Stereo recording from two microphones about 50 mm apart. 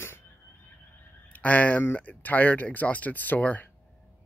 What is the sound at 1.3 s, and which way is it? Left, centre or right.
Speech, left.